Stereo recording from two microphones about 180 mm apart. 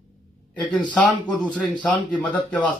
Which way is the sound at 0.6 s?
5° left (ahead or behind).